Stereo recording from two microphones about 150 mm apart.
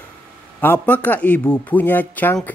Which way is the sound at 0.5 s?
15° left (ahead or behind).